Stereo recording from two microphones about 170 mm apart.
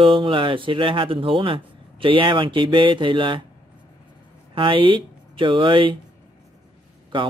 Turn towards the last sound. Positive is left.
turn(degrees=-30)  # may be behind; listen again after turning